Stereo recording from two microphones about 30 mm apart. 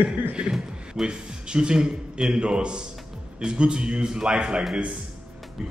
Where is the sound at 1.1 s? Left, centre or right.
Right.